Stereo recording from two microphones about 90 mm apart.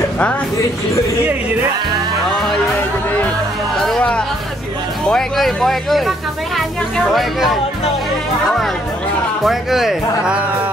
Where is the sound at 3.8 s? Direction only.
5° left (ahead or behind).